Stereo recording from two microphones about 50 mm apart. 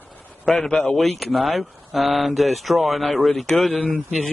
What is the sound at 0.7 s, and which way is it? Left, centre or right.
Speech, centre.